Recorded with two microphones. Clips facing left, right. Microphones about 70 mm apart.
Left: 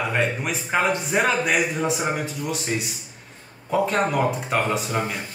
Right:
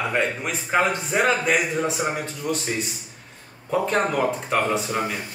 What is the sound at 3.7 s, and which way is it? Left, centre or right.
Speech, centre.